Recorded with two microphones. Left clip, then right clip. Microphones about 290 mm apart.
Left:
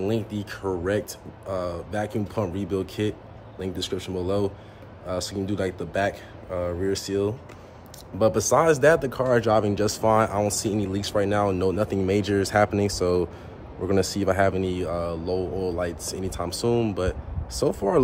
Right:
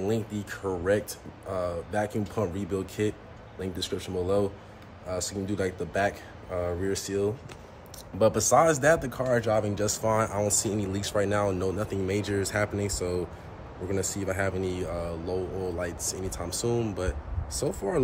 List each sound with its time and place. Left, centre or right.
0.0 s speech: centre
13.8 s speech: centre